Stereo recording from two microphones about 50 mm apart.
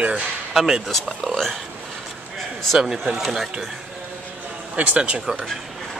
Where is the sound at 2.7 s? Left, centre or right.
Centre.